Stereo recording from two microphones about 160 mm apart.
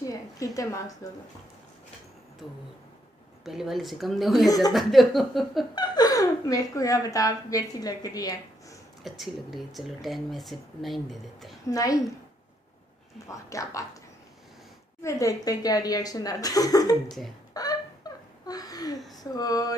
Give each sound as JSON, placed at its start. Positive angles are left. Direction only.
{"t": 0.0, "sound": "a sound", "side_deg": 20}
{"t": 1.0, "sound": "a woman's voice", "side_deg": 20}
{"t": 2.4, "sound": "speech", "side_deg": -5}
{"t": 5.8, "sound": "a woman's voice", "side_deg": 25}
{"t": 9.0, "sound": "speech", "side_deg": 0}
{"t": 11.7, "sound": "a woman's voice", "side_deg": 20}
{"t": 13.3, "sound": "a woman's voice", "side_deg": 20}
{"t": 15.0, "sound": "a woman's voice", "side_deg": 20}
{"t": 17.6, "sound": "a sound", "side_deg": 25}